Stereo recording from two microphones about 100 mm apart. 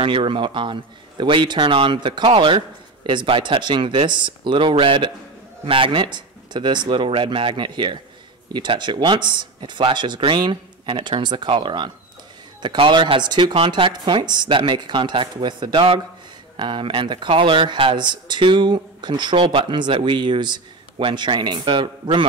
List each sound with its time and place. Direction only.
0.0 s a man's voice: 60° right (ahead or behind)